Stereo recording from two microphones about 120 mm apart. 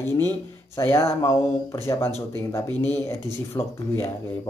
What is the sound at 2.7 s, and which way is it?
Speech, 35° right (ahead or behind).